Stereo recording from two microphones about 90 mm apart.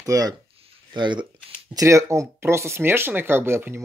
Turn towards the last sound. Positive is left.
turn(degrees=-25)  # may be behind; listen again after turning